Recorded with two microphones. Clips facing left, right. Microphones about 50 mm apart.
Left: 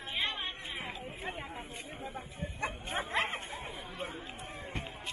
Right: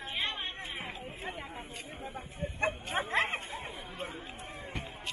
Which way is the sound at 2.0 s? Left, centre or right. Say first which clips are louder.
Right 3 dB; right.